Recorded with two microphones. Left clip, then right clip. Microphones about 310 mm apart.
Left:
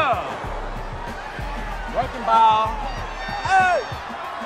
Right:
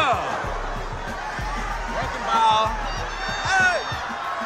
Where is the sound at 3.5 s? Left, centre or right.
Centre.